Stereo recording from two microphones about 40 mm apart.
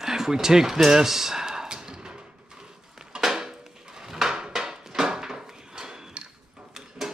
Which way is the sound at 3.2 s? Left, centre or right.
Centre.